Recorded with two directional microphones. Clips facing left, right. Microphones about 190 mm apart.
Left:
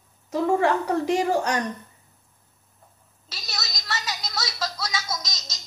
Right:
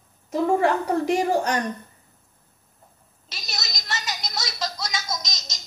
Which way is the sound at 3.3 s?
20° right (ahead or behind).